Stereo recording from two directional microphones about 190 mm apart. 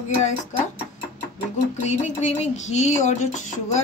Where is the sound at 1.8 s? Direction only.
40° left (ahead or behind).